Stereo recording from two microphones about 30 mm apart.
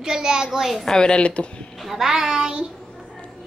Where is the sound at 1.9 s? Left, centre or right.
Centre.